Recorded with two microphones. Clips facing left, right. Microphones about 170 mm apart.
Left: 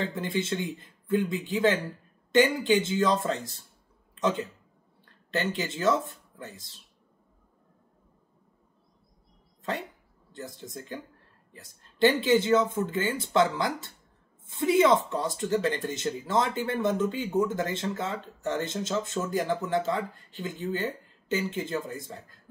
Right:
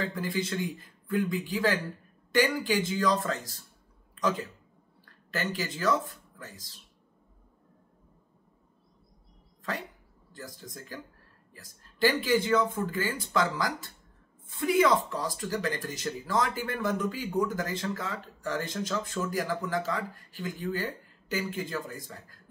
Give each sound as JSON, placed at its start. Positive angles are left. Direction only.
{"t": 0.0, "sound": "speech", "side_deg": 25}
{"t": 9.6, "sound": "dog", "side_deg": 25}
{"t": 10.3, "sound": "speech", "side_deg": 25}